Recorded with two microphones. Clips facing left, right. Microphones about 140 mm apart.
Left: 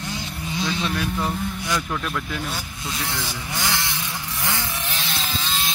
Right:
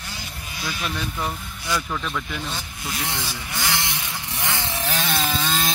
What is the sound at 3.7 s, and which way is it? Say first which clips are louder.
Chainsaw: right 1 dB; 20° right (ahead or behind).